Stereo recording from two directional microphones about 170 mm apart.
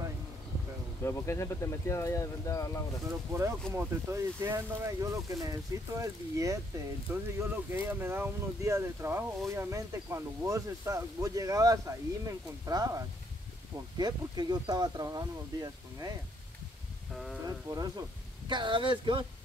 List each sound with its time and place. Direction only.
1.0 s speech: 15° left (ahead or behind)
3.1 s speech: 15° right (ahead or behind)
17.5 s speech: 20° right (ahead or behind)